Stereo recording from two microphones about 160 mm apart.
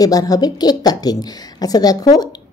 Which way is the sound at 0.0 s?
25° left (ahead or behind).